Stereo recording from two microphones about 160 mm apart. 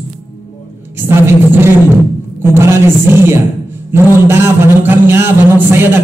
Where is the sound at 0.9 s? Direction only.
15° right (ahead or behind).